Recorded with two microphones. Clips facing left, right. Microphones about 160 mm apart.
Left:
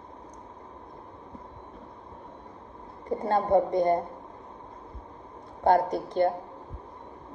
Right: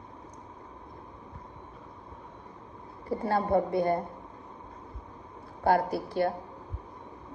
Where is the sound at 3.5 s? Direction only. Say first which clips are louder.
Left 4 dB; 10° right (ahead or behind).